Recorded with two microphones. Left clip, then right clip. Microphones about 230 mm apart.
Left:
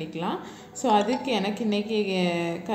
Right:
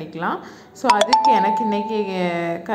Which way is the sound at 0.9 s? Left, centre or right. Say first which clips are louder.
Right 8 dB; right.